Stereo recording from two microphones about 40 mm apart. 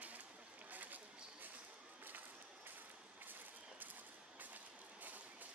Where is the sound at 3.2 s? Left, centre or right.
Right.